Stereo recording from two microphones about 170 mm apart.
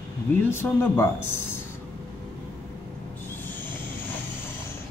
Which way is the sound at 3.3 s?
10° left (ahead or behind).